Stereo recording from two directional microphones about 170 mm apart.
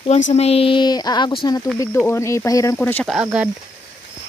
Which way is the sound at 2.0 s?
15° left (ahead or behind).